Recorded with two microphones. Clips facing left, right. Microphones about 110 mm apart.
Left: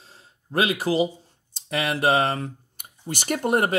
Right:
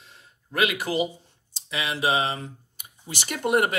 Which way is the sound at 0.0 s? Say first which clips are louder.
Left 1 dB; 35° left (ahead or behind).